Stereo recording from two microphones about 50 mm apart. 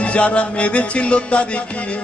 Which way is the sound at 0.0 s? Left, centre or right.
Left.